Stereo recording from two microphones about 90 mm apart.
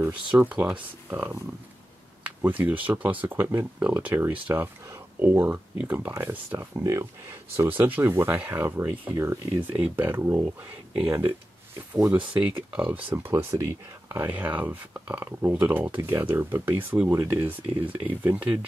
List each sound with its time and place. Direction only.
0.0 s speech: 20° right (ahead or behind)
2.4 s speech: 20° right (ahead or behind)
6.8 s speech: 35° right (ahead or behind)
12.4 s speech: 20° right (ahead or behind)